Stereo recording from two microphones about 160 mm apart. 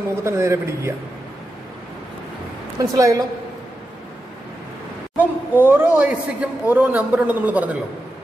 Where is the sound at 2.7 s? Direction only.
20° right (ahead or behind).